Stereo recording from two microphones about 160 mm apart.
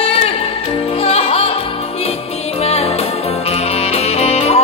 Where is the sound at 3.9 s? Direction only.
40° left (ahead or behind).